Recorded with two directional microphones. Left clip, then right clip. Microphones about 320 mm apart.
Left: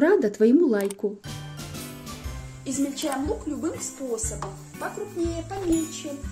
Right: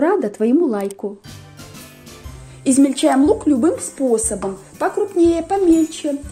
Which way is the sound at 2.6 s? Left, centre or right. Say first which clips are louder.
Right 14 dB; right.